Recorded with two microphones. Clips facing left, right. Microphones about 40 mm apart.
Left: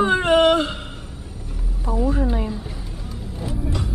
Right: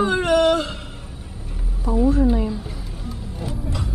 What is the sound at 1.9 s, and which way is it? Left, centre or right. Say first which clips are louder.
Speech: right 3 dB; centre.